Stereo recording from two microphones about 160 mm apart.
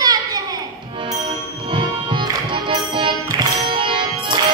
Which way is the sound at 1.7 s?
30° right (ahead or behind).